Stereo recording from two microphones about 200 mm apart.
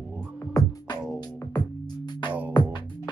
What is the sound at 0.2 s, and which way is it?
Music, 15° left (ahead or behind).